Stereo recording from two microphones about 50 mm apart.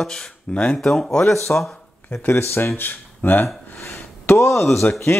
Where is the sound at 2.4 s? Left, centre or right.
Left.